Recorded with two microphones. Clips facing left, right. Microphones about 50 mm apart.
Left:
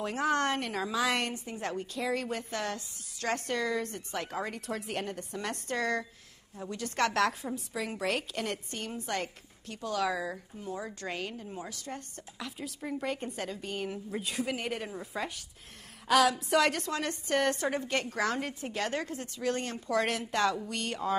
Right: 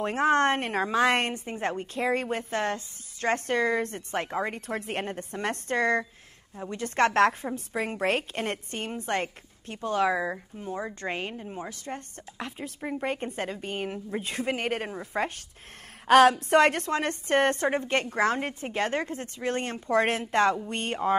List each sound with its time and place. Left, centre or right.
0.0 s a woman's voice: right